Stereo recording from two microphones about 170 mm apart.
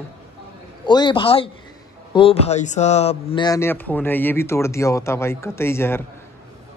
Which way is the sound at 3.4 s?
15° left (ahead or behind).